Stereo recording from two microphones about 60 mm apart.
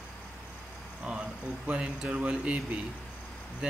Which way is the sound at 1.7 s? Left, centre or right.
Centre.